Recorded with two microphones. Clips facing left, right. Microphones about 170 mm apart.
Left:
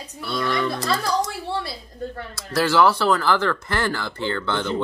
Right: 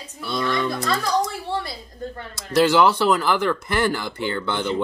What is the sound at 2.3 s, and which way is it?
Speech, 20° right (ahead or behind).